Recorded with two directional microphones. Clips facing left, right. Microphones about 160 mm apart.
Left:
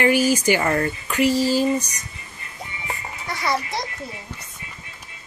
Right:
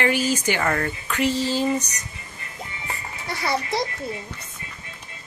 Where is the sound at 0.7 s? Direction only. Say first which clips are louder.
Left 3 dB; 25° left (ahead or behind).